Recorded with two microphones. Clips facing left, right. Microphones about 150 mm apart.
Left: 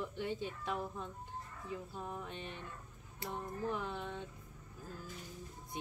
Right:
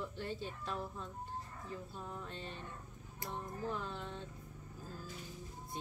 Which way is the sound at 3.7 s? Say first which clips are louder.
Left 2 dB; 15° left (ahead or behind).